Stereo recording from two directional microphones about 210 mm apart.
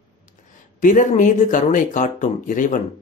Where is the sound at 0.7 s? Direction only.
40° left (ahead or behind).